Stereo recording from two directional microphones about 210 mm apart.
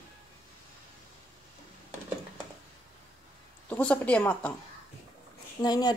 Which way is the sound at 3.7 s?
5° left (ahead or behind).